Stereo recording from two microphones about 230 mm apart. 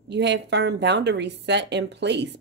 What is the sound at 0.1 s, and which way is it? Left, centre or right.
Speech, right.